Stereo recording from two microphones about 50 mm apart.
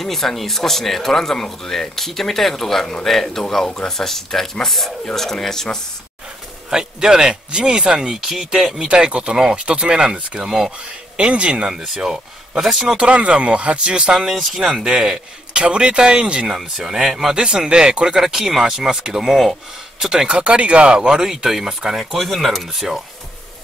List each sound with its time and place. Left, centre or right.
0.0 s speech: centre
6.7 s a man's voice: centre
10.4 s speech: centre
11.1 s a man's voice: right
11.7 s speech: centre
13.0 s a man's voice: right
14.1 s speech: centre
14.8 s a man's voice: centre
16.4 s speech: centre
17.4 s speech: centre
20.2 s a man's voice: right
21.1 s speech: centre